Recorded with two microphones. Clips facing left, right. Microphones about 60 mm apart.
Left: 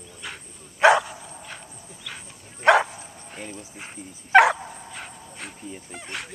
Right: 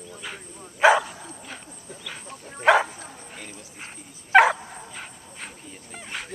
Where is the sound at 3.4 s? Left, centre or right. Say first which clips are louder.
Left 7 dB; left.